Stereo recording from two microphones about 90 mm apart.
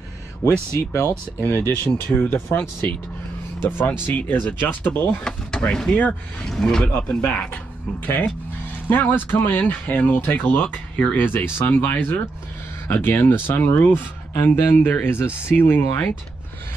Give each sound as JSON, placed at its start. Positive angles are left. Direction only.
{"t": 0.4, "sound": "speech", "side_deg": -35}
{"t": 0.7, "sound": "speech", "side_deg": 30}